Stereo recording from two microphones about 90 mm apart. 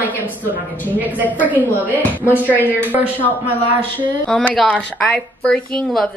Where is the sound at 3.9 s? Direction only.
15° left (ahead or behind).